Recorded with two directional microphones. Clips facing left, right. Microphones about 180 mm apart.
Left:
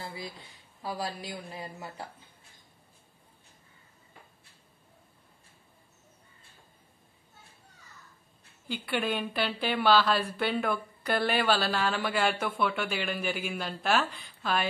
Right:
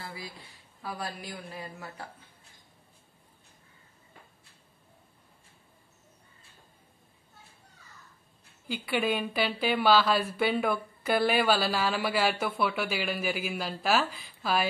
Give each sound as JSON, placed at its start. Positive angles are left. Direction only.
{"t": 0.0, "sound": "a sound", "side_deg": 25}
{"t": 0.8, "sound": "a woman's voice", "side_deg": 20}
{"t": 8.6, "sound": "a woman's voice", "side_deg": -5}